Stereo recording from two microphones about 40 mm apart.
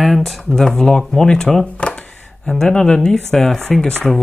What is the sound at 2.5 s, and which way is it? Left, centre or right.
Speech, centre.